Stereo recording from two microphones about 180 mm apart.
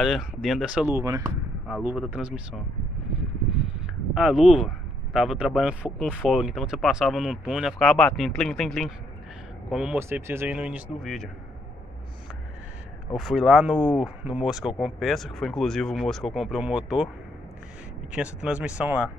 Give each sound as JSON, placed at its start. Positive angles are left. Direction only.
{"t": 0.0, "sound": "speech", "side_deg": 0}
{"t": 0.8, "sound": "speech", "side_deg": -15}
{"t": 3.2, "sound": "a sound", "side_deg": -5}
{"t": 6.0, "sound": "speech", "side_deg": 0}
{"t": 9.9, "sound": "speech", "side_deg": -15}
{"t": 13.1, "sound": "speech", "side_deg": 0}
{"t": 18.1, "sound": "speech", "side_deg": -5}